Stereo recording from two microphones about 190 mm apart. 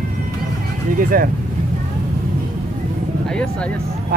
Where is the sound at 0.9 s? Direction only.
50° right (ahead or behind).